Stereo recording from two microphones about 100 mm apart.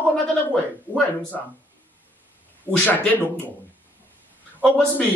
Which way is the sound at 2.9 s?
20° left (ahead or behind).